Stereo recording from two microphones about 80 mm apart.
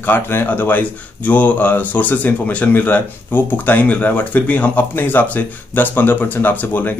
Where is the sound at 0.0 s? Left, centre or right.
Left.